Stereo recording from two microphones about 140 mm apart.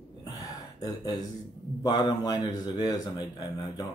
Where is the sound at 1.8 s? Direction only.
30° left (ahead or behind).